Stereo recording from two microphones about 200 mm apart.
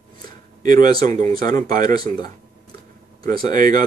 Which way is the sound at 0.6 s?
40° right (ahead or behind).